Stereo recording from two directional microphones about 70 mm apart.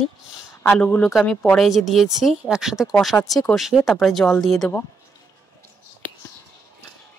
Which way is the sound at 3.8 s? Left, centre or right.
Centre.